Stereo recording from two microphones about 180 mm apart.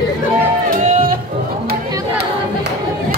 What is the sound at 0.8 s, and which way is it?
Music, 45° right (ahead or behind).